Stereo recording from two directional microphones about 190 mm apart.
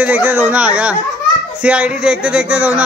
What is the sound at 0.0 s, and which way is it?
Speech, 10° right (ahead or behind).